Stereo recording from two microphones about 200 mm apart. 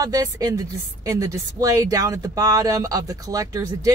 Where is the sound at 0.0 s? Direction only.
20° right (ahead or behind).